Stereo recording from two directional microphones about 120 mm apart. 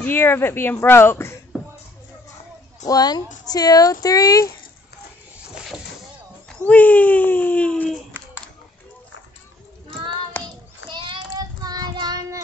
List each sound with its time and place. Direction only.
0.0 s speech: 20° left (ahead or behind)
2.9 s a woman's voice: 35° left (ahead or behind)
6.6 s a sound: 15° left (ahead or behind)
10.3 s child singing: 15° left (ahead or behind)
10.9 s child singing: 45° right (ahead or behind)